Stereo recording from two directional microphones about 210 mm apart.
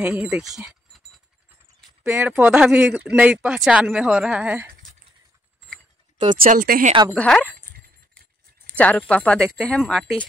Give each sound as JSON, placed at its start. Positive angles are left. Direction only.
{"t": 0.0, "sound": "speech", "side_deg": -5}
{"t": 6.2, "sound": "speech", "side_deg": -40}
{"t": 7.2, "sound": "speech", "side_deg": 5}
{"t": 8.6, "sound": "speech", "side_deg": 5}